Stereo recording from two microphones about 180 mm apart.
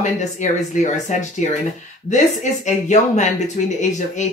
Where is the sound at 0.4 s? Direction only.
40° left (ahead or behind).